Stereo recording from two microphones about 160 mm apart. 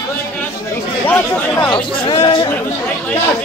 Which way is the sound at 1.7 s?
30° left (ahead or behind).